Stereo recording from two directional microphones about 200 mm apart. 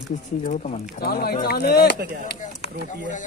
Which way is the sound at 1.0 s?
50° left (ahead or behind).